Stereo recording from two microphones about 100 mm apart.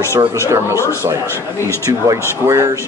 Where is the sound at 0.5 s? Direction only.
30° right (ahead or behind).